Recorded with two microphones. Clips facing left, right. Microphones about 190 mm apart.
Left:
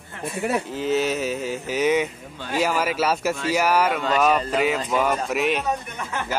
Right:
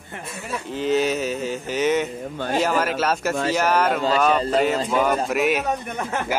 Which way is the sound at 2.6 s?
5° left (ahead or behind).